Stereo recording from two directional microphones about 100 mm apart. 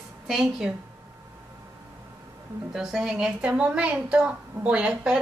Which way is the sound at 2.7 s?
5° right (ahead or behind).